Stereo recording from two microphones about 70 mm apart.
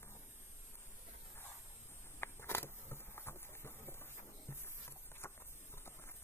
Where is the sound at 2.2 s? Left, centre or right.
Left.